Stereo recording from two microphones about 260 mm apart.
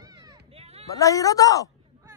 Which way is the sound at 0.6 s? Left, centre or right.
Right.